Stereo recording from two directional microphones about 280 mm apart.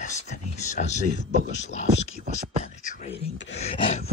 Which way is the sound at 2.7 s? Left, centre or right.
Left.